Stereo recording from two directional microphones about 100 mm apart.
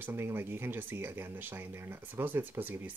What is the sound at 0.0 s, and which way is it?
Speech, 25° right (ahead or behind).